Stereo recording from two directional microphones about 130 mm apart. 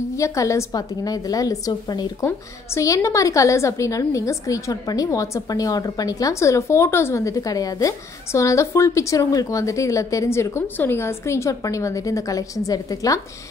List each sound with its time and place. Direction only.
0.2 s a woman's voice: 25° left (ahead or behind)
2.2 s a woman's voice: 20° left (ahead or behind)